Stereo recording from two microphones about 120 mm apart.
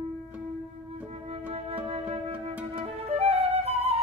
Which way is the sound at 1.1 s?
55° right (ahead or behind).